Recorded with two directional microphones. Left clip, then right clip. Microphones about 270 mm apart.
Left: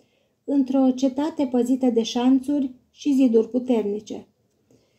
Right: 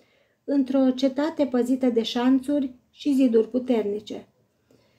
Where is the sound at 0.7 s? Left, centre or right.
Centre.